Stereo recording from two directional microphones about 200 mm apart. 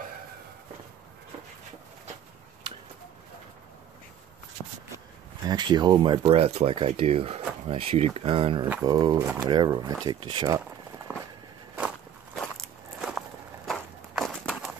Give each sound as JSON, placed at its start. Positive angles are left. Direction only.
{"t": 4.6, "sound": "shuffle", "side_deg": 15}
{"t": 5.5, "sound": "speech", "side_deg": -20}
{"t": 11.1, "sound": "a sound", "side_deg": -5}
{"t": 12.4, "sound": "walk", "side_deg": 0}